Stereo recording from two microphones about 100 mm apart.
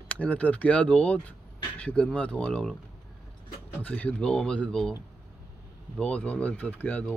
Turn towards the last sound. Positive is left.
turn(degrees=15)  # may be behind; listen again after turning